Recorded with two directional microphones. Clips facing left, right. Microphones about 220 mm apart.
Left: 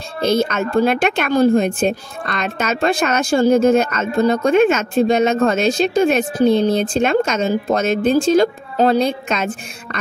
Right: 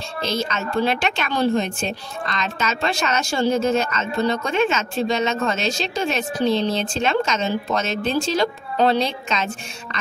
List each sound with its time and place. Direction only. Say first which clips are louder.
0.2 s speech: left 8 dB; 55° left (ahead or behind)